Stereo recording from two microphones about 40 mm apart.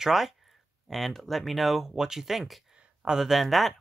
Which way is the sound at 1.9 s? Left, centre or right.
Centre.